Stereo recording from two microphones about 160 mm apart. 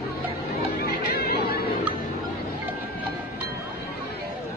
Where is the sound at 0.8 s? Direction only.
75° left (ahead or behind).